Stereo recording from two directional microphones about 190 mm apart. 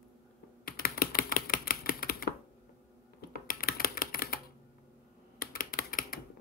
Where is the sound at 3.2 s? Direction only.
55° left (ahead or behind).